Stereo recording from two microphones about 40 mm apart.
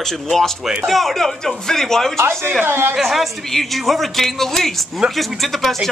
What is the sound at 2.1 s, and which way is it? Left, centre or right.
Speech, right.